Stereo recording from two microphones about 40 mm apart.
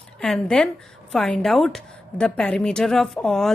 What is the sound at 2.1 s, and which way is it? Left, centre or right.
A woman's voice, left.